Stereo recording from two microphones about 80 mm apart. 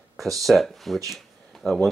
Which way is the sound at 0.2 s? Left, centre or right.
Centre.